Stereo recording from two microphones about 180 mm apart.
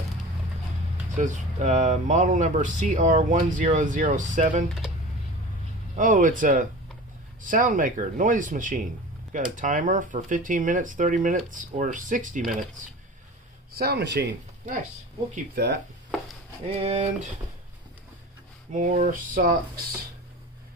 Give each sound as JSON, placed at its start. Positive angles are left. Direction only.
{"t": 1.1, "sound": "speech", "side_deg": -40}
{"t": 5.9, "sound": "speech", "side_deg": -45}
{"t": 13.7, "sound": "speech", "side_deg": -65}
{"t": 15.5, "sound": "speech", "side_deg": -70}
{"t": 16.7, "sound": "speech", "side_deg": -35}
{"t": 18.7, "sound": "speech", "side_deg": -45}